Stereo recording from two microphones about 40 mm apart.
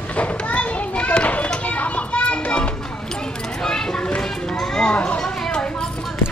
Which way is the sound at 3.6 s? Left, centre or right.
Centre.